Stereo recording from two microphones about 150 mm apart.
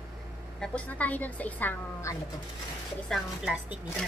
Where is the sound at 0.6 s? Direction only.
10° left (ahead or behind).